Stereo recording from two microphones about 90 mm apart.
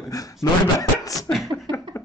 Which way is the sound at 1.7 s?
60° right (ahead or behind).